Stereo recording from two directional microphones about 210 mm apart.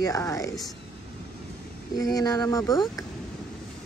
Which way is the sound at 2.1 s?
15° left (ahead or behind).